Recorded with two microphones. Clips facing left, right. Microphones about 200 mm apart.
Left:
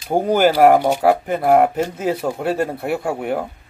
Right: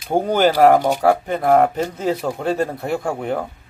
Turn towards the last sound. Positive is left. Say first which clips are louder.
# left 1 dB
turn(degrees=5)  # may be behind; listen again after turning